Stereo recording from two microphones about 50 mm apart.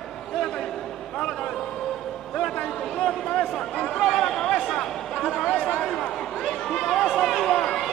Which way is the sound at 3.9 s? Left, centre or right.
Centre.